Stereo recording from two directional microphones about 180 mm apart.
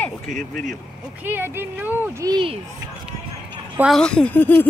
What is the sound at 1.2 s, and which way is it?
Speech, 10° right (ahead or behind).